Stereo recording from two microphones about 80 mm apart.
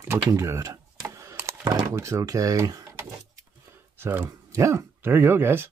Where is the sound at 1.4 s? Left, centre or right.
Right.